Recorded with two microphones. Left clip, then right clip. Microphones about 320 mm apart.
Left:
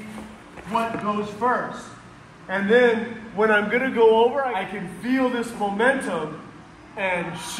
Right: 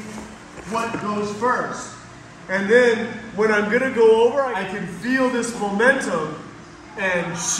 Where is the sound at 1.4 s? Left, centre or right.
Centre.